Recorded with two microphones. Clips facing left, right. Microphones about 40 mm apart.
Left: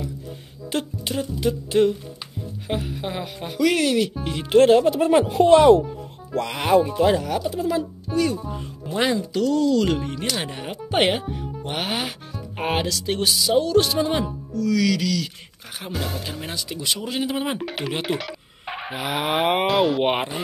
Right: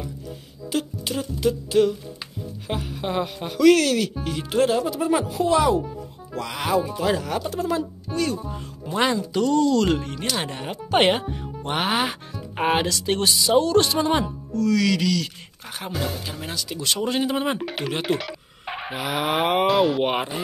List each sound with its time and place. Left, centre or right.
1.0 s speech: centre
2.7 s speech: centre; by 4.6 s left
4.6 s speech: left
6.4 s speech: centre
7.2 s speech: centre
20.0 s speech: centre